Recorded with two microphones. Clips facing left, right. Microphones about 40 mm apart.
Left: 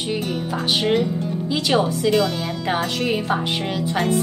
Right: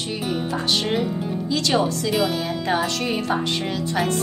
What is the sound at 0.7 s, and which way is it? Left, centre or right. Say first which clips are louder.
Speech: left 4 dB; centre.